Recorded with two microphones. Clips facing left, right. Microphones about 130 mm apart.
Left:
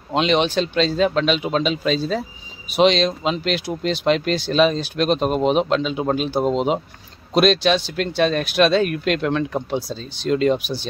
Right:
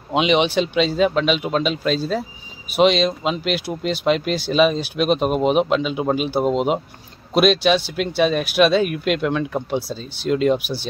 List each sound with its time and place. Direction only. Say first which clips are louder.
0.1 s speech: right 1 dB; 10° right (ahead or behind)